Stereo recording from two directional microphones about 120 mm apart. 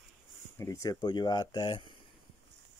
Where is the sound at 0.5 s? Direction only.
25° left (ahead or behind); by 1.9 s 40° left (ahead or behind).